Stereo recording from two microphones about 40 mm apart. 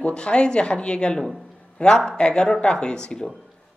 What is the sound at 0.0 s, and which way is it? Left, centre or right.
Speech, left.